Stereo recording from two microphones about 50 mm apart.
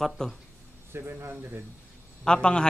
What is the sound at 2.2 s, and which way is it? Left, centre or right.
Speech, centre.